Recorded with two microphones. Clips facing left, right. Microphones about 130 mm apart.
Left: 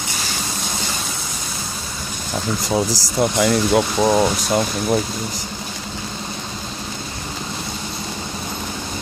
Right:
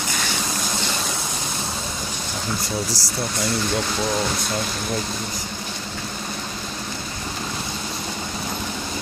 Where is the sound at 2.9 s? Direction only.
90° left.